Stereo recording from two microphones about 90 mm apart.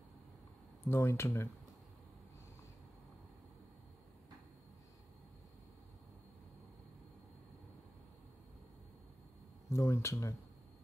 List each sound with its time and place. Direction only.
0.8 s speech: 25° left (ahead or behind)
9.7 s speech: 30° left (ahead or behind)